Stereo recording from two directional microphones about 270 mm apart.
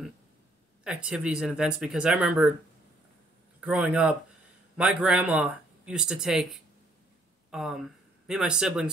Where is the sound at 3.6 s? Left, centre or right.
Centre.